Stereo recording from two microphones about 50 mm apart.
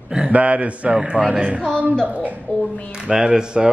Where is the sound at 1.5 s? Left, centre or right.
Centre.